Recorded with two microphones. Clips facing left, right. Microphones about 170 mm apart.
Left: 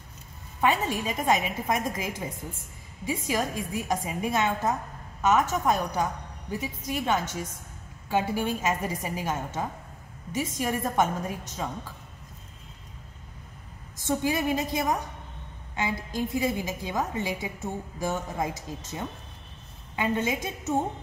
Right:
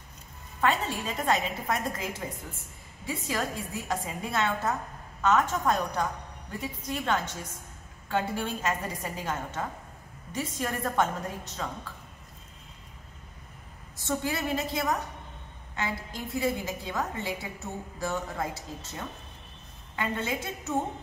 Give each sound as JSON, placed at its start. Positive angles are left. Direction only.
{"t": 0.6, "sound": "a woman's voice", "side_deg": 15}
{"t": 13.9, "sound": "a woman's voice", "side_deg": 15}
{"t": 20.0, "sound": "a woman's voice", "side_deg": 15}